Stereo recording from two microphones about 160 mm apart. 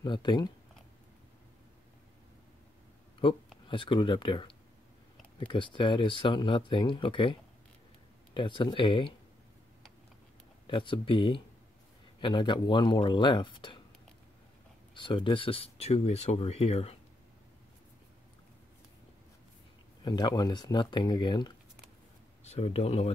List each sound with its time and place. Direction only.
0.0 s speech: 30° left (ahead or behind)
3.6 s speech: 30° left (ahead or behind)
8.4 s speech: 30° left (ahead or behind)
10.7 s speech: 30° left (ahead or behind)
15.0 s speech: 30° left (ahead or behind)
20.0 s speech: 25° left (ahead or behind)
22.4 s speech: 40° left (ahead or behind)